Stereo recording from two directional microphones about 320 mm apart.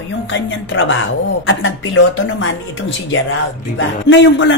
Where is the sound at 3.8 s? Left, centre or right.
Left.